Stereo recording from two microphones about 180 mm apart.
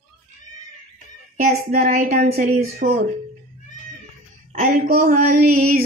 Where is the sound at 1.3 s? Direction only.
50° right (ahead or behind).